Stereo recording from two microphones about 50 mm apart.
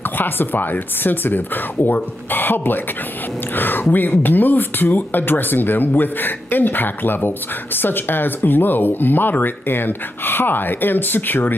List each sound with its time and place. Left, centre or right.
0.0 s speech: left